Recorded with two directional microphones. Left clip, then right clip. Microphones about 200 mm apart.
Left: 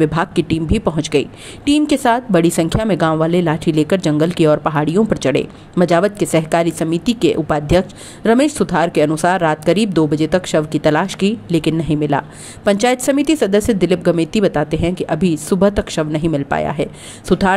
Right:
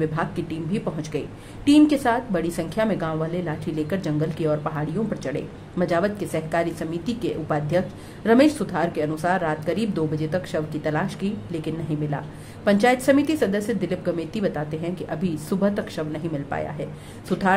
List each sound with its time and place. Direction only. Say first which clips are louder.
0.0 s a woman's voice: left 10 dB; 40° left (ahead or behind)